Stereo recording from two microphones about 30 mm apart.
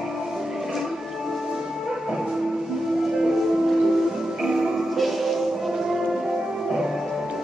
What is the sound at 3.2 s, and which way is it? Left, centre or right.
Music, centre.